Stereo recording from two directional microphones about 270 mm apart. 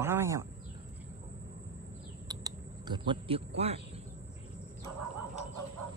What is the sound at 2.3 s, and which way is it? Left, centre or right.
Typing, centre.